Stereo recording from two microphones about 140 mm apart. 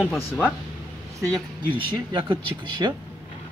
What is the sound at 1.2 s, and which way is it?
Speech, 30° right (ahead or behind).